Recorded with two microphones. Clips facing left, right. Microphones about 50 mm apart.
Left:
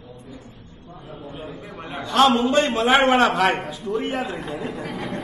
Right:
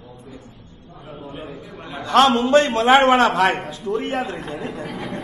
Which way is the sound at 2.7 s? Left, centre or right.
Centre.